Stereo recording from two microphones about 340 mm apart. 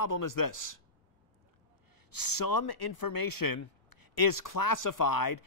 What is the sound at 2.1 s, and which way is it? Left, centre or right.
Speech, left.